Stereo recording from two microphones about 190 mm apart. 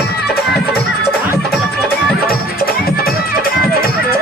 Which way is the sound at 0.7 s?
55° left (ahead or behind).